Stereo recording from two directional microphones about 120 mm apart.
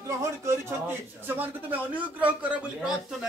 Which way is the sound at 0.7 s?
20° right (ahead or behind).